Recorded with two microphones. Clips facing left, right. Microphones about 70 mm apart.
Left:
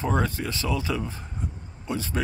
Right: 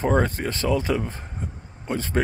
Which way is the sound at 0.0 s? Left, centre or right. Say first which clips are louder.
Right 4 dB; right.